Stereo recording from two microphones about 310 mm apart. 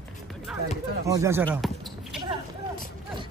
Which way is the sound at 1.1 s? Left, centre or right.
Centre.